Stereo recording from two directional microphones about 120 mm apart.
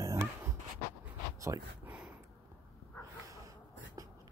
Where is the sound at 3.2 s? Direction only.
25° right (ahead or behind).